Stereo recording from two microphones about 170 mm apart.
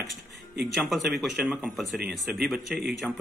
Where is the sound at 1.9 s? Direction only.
65° right (ahead or behind).